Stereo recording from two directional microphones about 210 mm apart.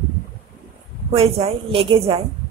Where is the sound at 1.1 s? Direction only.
30° right (ahead or behind).